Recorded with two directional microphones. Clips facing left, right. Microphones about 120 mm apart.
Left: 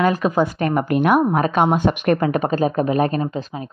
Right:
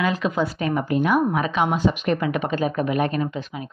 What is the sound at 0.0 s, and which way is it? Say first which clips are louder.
Speech: left 5 dB; 45° left (ahead or behind).